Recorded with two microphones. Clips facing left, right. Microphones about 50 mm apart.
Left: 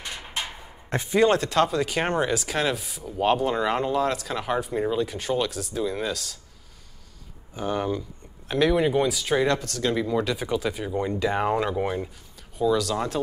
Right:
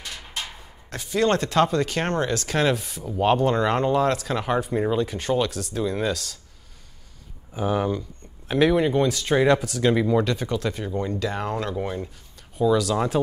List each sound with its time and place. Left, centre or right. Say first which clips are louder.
0.0 s a sound: left 1 dB; centre
0.8 s speech: left 3 dB; left
1.2 s speech: right 1 dB; centre
7.5 s speech: right 3 dB; centre
12.5 s speech: right 2 dB; centre